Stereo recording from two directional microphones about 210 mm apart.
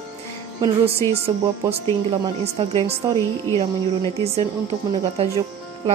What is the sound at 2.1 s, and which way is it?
Speech, 25° right (ahead or behind).